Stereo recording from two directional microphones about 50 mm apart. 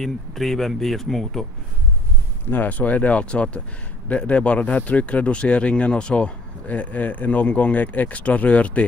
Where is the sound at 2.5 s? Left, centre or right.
Left.